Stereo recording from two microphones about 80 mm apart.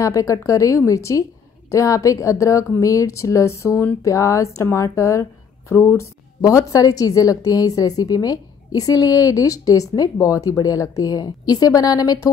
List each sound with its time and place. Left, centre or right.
0.0 s a woman's voice: left